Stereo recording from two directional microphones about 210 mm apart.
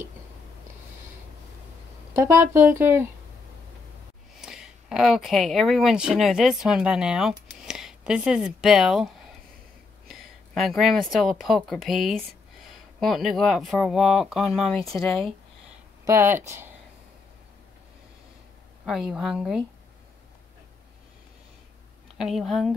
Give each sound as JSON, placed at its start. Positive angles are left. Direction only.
{"t": 2.1, "sound": "speech", "side_deg": -15}
{"t": 4.4, "sound": "speech", "side_deg": 0}
{"t": 10.0, "sound": "a sound", "side_deg": 0}
{"t": 11.4, "sound": "speech", "side_deg": 0}
{"t": 16.1, "sound": "speech", "side_deg": -10}
{"t": 18.9, "sound": "speech", "side_deg": 0}
{"t": 22.2, "sound": "speech", "side_deg": 0}